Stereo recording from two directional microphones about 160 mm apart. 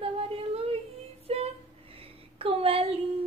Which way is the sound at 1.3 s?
40° right (ahead or behind).